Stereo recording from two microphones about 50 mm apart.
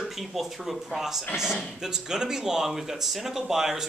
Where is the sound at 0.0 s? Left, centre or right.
Centre.